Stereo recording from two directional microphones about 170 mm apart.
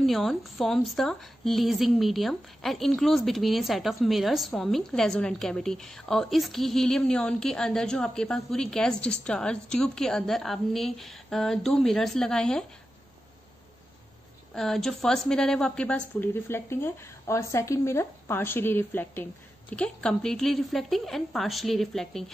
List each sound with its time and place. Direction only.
0.0 s a woman's voice: centre (ahead or behind)
14.5 s a woman's voice: centre (ahead or behind)